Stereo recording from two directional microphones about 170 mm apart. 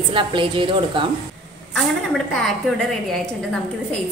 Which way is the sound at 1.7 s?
Centre (ahead or behind).